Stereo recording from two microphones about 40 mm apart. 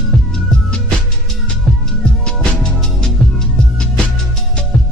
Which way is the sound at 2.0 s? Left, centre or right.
Centre.